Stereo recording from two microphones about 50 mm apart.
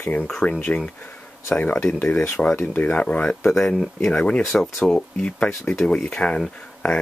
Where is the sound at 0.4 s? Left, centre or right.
Left.